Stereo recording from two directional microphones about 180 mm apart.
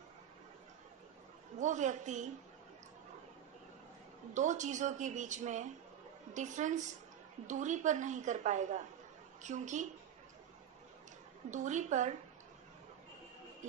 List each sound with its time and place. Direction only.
1.6 s a woman's voice: 40° right (ahead or behind)
4.3 s a woman's voice: 40° right (ahead or behind)
11.5 s a woman's voice: 40° right (ahead or behind)